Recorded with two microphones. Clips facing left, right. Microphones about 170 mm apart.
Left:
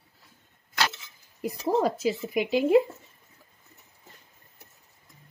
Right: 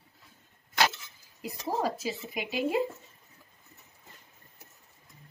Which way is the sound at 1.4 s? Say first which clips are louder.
Left 6 dB; 50° left (ahead or behind).